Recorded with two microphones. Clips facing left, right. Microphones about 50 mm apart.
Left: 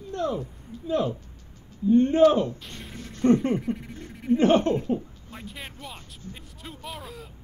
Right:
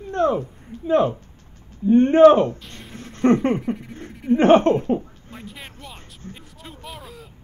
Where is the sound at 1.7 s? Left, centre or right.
Right.